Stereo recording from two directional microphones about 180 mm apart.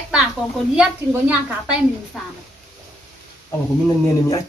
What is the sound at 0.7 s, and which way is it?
A woman's voice, 5° right (ahead or behind).